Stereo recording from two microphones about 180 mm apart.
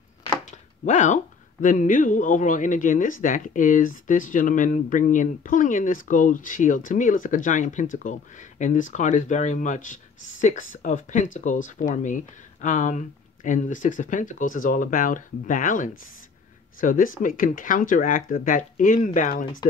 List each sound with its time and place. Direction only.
0.5 s speech: 45° left (ahead or behind)